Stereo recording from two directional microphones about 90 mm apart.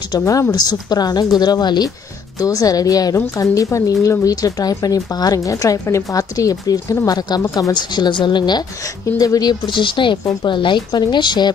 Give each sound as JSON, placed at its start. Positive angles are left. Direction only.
{"t": 0.5, "sound": "speech", "side_deg": 50}
{"t": 9.0, "sound": "speech", "side_deg": 40}